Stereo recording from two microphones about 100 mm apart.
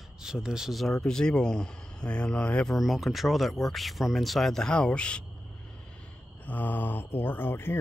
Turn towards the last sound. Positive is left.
turn(degrees=20)  # may be behind; listen again after turning